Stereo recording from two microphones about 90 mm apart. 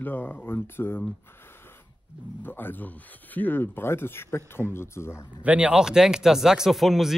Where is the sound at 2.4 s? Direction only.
25° left (ahead or behind).